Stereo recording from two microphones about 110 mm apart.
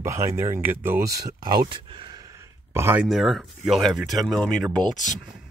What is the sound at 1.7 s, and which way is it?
Speech, 50° right (ahead or behind).